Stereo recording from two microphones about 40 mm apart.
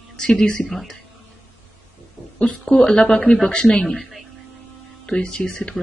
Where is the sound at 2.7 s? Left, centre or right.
Centre.